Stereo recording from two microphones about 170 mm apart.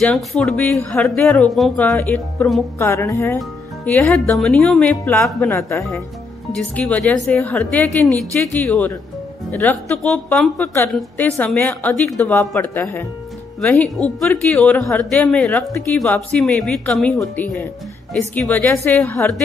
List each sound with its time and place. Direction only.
0.0 s a woman's voice: 5° left (ahead or behind)
3.3 s speech: 5° left (ahead or behind)
5.5 s a woman's voice: 20° left (ahead or behind)
6.5 s a woman's voice: 5° left (ahead or behind)